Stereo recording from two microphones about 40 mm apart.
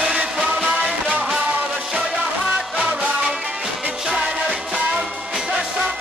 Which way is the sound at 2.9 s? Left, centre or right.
Right.